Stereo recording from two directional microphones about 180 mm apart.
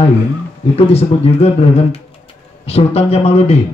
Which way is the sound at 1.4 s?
35° left (ahead or behind).